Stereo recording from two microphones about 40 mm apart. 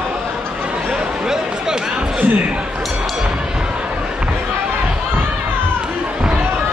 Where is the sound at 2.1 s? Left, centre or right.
Right.